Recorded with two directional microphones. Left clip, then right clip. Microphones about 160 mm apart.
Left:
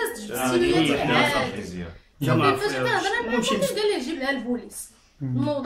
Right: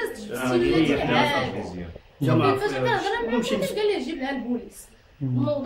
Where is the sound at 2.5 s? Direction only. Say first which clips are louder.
Even; 25° left (ahead or behind).